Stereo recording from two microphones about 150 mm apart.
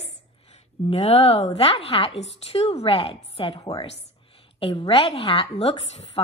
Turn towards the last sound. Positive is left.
turn(degrees=45)  # may be behind; listen again after turning